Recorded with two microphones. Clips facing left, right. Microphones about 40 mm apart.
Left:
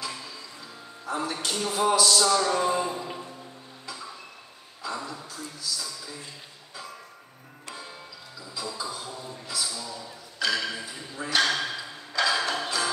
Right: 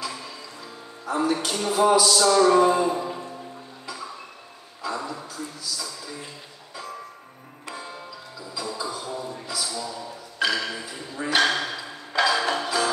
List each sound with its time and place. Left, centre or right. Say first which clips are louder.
0.0 s music: right 3 dB; centre
2.3 s music: right 7 dB; centre
4.8 s a sound: right 4 dB; centre
5.3 s speech: right 2 dB; centre
7.7 s tick-tock: right 5 dB; centre
8.7 s music: right 4 dB; centre
9.1 s speech: right 5 dB; right
11.1 s music: right 3 dB; centre